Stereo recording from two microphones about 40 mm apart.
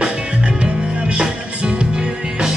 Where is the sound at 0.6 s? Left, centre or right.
Right.